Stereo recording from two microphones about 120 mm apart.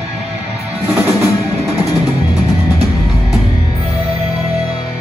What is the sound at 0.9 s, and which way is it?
Music, 15° right (ahead or behind).